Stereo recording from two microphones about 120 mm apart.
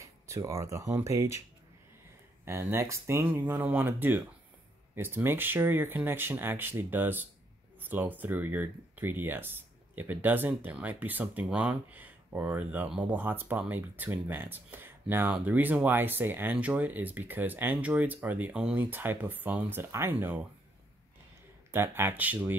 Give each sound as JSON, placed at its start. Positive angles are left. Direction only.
{"t": 0.0, "sound": "speech", "side_deg": -25}
{"t": 2.4, "sound": "speech", "side_deg": -25}
{"t": 21.7, "sound": "speech", "side_deg": -20}